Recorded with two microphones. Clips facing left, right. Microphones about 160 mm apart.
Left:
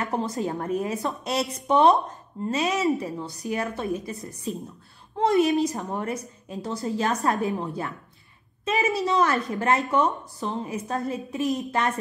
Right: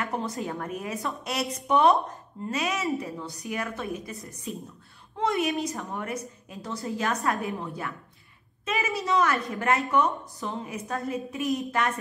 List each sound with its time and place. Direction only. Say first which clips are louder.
0.0 s a woman's voice: left 4 dB; 25° left (ahead or behind)